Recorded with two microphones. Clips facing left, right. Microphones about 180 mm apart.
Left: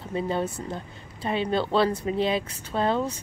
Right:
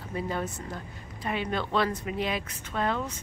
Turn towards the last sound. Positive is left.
turn(degrees=30)  # may be behind; listen again after turning